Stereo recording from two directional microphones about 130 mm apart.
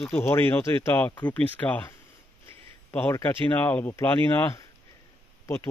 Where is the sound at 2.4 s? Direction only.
10° left (ahead or behind).